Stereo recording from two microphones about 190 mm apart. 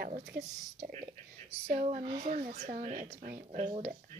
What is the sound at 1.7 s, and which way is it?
A woman's voice, 35° right (ahead or behind).